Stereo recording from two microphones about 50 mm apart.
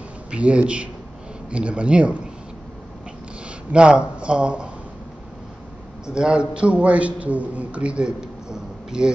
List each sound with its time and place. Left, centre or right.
0.3 s speech: right
3.4 s speech: centre
6.0 s a man's voice: centre